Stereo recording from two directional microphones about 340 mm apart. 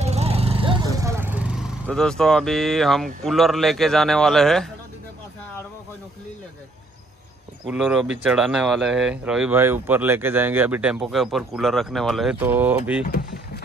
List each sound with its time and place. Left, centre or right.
0.0 s a sound: centre
0.9 s speech: centre
7.6 s speech: centre
13.0 s speech: left